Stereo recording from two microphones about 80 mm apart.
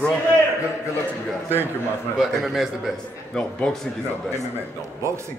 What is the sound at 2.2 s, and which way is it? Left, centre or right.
Speech, centre.